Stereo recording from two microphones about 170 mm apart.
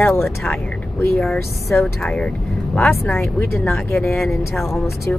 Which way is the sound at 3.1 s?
15° left (ahead or behind).